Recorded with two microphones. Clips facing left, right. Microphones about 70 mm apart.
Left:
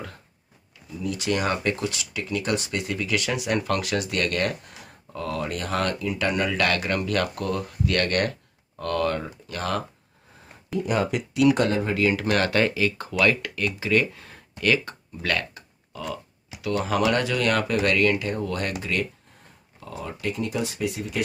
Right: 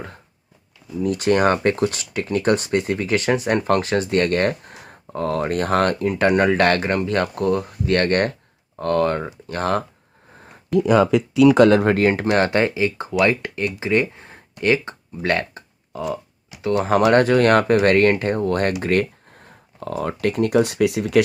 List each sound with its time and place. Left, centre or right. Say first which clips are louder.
1.0 s speech: right 8 dB; right
11.6 s speech: right 10 dB; right
11.9 s speech: right 5 dB; right
12.3 s speech: right 4 dB; right
14.6 s a sound: right 4 dB; right
16.6 s speech: right 6 dB; right